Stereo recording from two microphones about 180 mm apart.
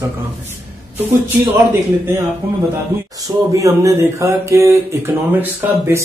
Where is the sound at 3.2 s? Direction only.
15° right (ahead or behind).